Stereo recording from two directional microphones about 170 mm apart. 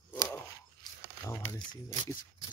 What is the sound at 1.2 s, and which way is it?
Speech, 20° left (ahead or behind).